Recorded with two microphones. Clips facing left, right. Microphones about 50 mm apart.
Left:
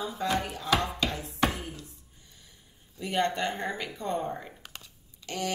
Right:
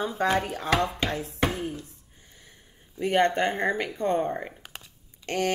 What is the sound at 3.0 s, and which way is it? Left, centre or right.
Speech, right.